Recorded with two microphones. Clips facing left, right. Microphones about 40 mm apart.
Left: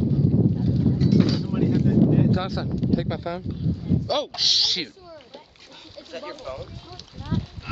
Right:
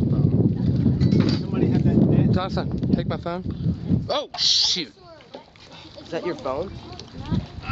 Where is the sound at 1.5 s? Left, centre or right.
Centre.